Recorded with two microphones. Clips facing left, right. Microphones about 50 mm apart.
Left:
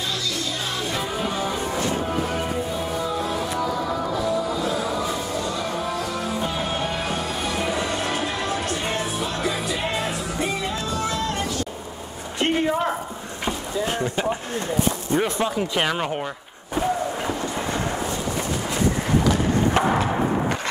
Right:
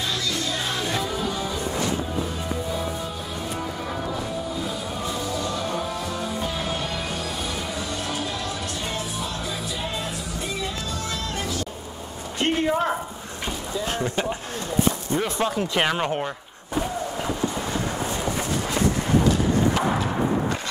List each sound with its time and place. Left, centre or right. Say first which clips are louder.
12.6 s a sound: even; centre
15.1 s speech: left 3 dB; left
15.4 s speech: even; centre